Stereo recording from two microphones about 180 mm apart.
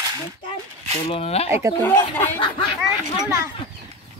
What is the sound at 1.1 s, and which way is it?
Speech, 35° left (ahead or behind).